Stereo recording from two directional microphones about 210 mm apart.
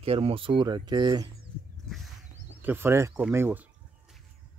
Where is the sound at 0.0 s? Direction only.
25° right (ahead or behind).